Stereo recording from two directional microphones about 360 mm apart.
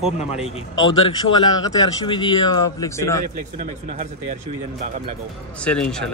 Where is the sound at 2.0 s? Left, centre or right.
Centre.